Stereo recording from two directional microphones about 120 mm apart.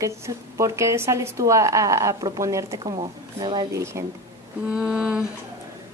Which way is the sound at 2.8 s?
50° right (ahead or behind).